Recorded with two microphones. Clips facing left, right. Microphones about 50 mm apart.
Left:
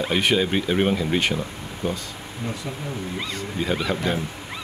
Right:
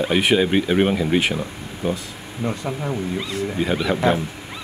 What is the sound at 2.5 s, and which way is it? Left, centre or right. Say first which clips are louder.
Speech: right 6 dB; right.